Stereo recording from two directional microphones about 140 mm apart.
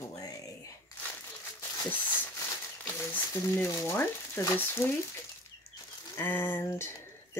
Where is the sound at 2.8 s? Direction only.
15° left (ahead or behind).